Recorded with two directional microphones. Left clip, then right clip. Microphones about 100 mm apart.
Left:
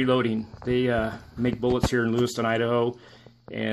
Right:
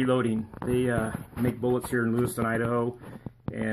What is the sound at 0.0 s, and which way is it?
Speech, 10° left (ahead or behind).